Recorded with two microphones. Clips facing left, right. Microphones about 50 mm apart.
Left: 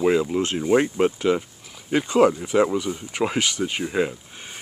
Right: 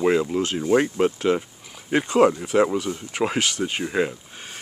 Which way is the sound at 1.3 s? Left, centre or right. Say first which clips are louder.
Even; centre.